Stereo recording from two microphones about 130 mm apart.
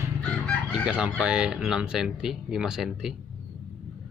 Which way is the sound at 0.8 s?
10° right (ahead or behind).